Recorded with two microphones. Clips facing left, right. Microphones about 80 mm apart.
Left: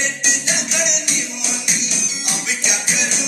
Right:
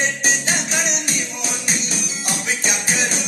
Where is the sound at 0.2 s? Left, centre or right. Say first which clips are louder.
Right 2 dB; right.